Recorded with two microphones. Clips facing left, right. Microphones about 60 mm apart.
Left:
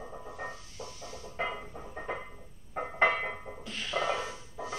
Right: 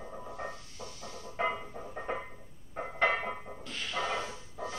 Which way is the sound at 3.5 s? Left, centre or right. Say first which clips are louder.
Left 2 dB; centre.